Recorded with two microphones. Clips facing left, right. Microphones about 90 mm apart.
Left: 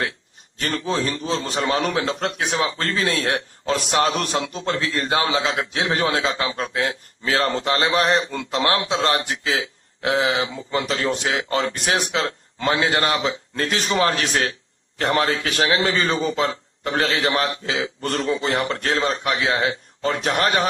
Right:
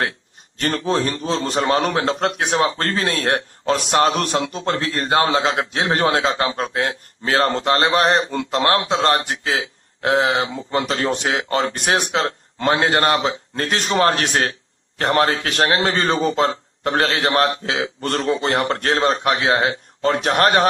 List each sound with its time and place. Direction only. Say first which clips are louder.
0.6 s a man's voice: right 3 dB; 45° right (ahead or behind)